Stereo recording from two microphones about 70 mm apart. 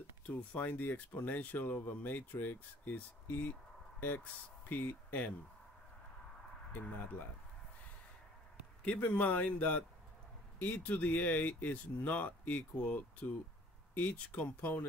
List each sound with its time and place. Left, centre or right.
0.4 s speech: left
6.7 s speech: left
8.8 s speech: centre